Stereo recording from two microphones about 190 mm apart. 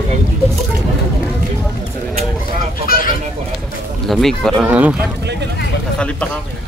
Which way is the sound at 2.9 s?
50° left (ahead or behind).